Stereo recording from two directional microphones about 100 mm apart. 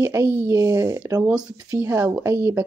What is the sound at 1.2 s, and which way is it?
Speech, 15° right (ahead or behind).